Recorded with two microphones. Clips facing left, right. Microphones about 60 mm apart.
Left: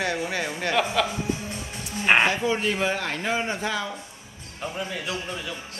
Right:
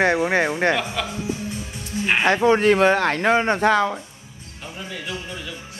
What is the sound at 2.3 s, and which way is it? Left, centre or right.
Speech, right.